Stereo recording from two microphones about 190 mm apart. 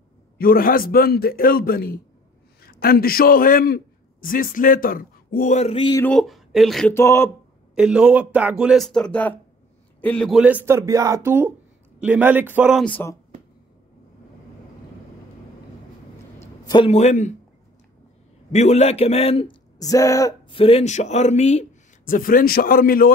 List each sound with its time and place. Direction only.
0.4 s a man's voice: 50° left (ahead or behind); by 6.0 s 25° left (ahead or behind)
6.0 s speech: centre (ahead or behind)
6.9 s speech: 15° left (ahead or behind)
7.7 s speech: 5° right (ahead or behind)
10.4 s speech: 10° right (ahead or behind)
12.8 s speech: 10° left (ahead or behind)
13.3 s a sound: 35° right (ahead or behind)
16.6 s a man's voice: 25° left (ahead or behind)
16.9 s speech: 40° left (ahead or behind)
18.5 s speech: 35° left (ahead or behind)
19.8 s speech: 20° left (ahead or behind); by 23.1 s 50° left (ahead or behind)